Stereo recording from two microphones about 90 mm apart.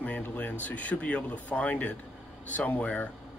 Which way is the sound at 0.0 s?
20° left (ahead or behind).